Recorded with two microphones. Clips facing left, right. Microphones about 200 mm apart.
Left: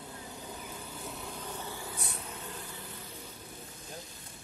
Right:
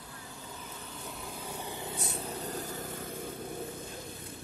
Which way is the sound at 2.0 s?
30° right (ahead or behind).